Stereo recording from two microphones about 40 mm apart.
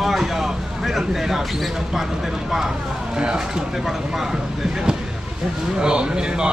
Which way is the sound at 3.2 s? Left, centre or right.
Centre.